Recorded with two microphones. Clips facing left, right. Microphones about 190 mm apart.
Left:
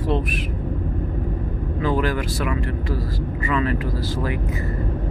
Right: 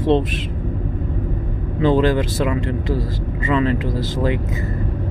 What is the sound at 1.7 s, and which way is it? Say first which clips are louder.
Speech: right 7 dB; 25° right (ahead or behind).